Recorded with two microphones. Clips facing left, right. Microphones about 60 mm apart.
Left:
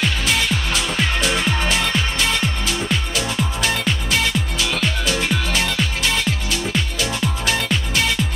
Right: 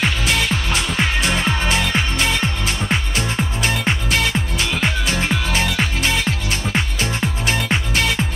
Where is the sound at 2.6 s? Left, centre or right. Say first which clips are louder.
Right 1 dB; right.